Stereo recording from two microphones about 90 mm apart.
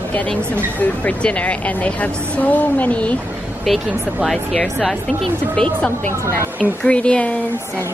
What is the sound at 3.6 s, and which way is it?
Speech, centre (ahead or behind).